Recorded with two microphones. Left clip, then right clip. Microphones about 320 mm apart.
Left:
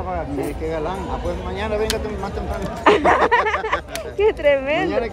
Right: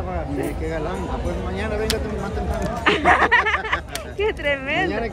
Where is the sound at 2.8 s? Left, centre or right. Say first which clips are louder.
Left 2 dB; centre.